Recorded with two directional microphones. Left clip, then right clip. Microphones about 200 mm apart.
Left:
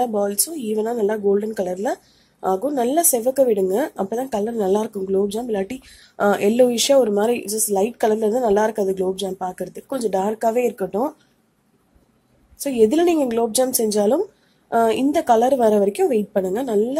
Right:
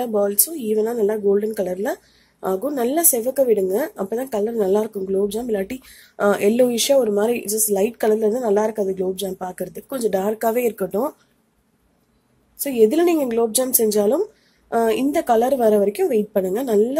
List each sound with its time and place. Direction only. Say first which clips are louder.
0.0 s a woman's voice: even; centre (ahead or behind)
12.5 s a woman's voice: even; centre (ahead or behind)